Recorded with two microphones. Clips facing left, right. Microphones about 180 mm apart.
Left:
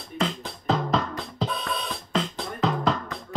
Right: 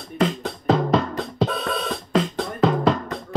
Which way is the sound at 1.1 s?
60° right (ahead or behind).